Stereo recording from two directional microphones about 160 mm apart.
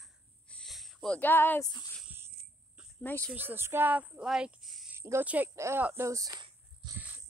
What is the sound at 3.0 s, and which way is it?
Speech, 10° left (ahead or behind).